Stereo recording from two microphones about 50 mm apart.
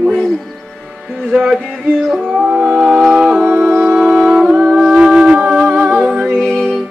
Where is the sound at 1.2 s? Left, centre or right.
Centre.